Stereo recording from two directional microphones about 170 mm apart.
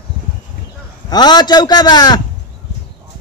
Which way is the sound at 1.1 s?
25° left (ahead or behind).